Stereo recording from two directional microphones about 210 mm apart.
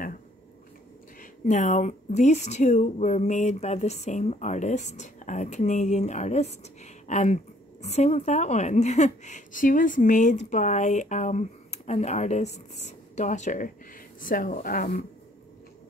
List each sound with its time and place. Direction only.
1.2 s a woman's voice: 35° left (ahead or behind)